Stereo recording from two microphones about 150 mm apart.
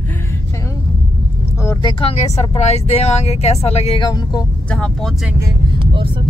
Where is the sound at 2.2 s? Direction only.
45° left (ahead or behind).